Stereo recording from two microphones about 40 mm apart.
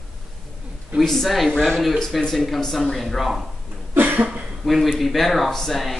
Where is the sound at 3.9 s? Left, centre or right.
Right.